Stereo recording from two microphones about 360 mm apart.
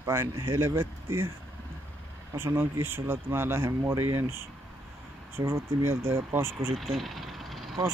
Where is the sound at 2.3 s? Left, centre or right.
Centre.